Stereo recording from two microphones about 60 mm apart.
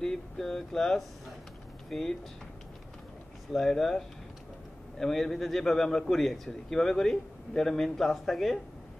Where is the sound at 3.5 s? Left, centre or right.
Centre.